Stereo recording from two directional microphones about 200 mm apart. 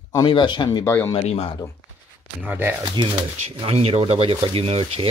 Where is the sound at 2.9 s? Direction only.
25° right (ahead or behind).